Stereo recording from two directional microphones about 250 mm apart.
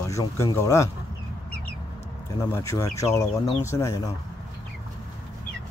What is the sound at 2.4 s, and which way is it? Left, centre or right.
Speech, centre.